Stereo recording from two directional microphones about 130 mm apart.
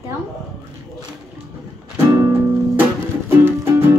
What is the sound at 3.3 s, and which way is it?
Music, 20° right (ahead or behind).